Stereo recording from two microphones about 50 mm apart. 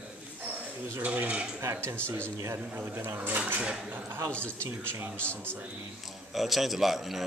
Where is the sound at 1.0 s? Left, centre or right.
Right.